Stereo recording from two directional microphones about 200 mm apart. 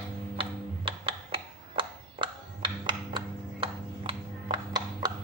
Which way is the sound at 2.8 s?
25° right (ahead or behind).